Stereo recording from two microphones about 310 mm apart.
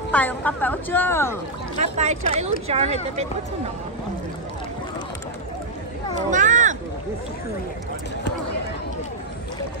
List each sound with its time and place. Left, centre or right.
0.1 s a woman's voice: centre
1.8 s speech: right
6.1 s a sound: right